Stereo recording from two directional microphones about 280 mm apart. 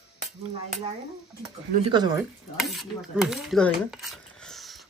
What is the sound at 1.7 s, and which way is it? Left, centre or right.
Speech, centre.